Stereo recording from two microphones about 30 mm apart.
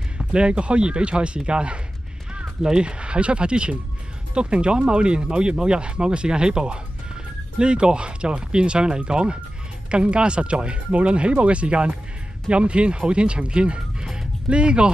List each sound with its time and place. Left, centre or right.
0.2 s speech: right